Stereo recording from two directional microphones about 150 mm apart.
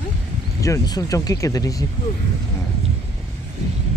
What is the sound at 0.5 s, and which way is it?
Speech, 20° left (ahead or behind).